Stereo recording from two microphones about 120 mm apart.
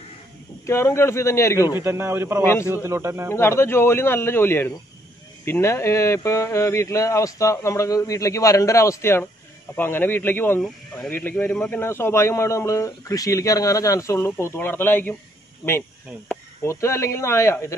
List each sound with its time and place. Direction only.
0.7 s speech: 20° left (ahead or behind)
1.8 s speech: 20° right (ahead or behind)
2.4 s speech: 20° left (ahead or behind)
2.7 s speech: 20° right (ahead or behind)
3.3 s a man's voice: 20° left (ahead or behind)
16.6 s speech: 25° left (ahead or behind)